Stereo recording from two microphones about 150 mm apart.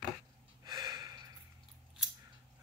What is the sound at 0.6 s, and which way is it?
Gasp, 25° right (ahead or behind).